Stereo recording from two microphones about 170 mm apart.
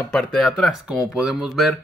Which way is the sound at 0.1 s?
5° left (ahead or behind).